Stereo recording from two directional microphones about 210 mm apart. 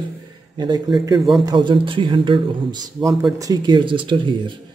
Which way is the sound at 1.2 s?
Centre (ahead or behind).